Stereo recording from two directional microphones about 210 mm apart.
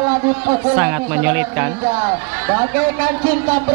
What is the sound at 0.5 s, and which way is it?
Speech, 10° right (ahead or behind).